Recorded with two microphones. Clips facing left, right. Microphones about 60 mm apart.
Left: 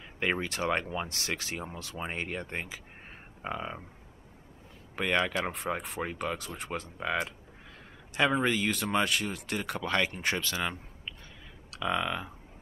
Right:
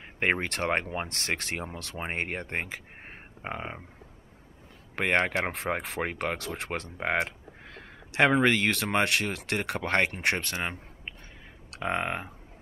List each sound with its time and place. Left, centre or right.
0.2 s speech: right
2.0 s speech: right
3.4 s speech: right
4.9 s speech: right
5.8 s speech: right
7.0 s speech: right
11.1 s whispering: right
11.7 s speech: right